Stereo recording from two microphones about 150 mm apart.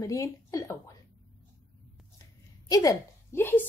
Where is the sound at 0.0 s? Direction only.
20° left (ahead or behind).